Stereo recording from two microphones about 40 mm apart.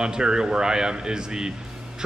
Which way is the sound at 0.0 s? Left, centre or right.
Centre.